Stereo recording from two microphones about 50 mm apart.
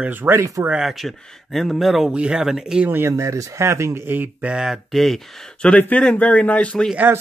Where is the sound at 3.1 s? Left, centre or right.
Right.